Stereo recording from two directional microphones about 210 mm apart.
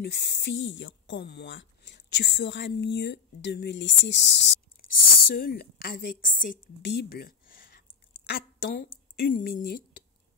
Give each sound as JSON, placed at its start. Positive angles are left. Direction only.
{"t": 0.0, "sound": "speech", "side_deg": 55}
{"t": 4.8, "sound": "a sound", "side_deg": 45}
{"t": 5.3, "sound": "a woman's voice", "side_deg": 45}